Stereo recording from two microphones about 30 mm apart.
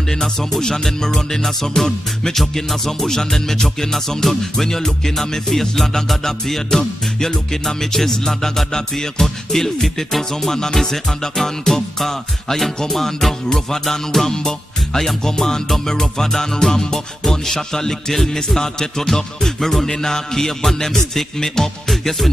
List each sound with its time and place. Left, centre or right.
0.1 s music: centre
14.3 s music: left
18.3 s speech: centre
19.1 s music: centre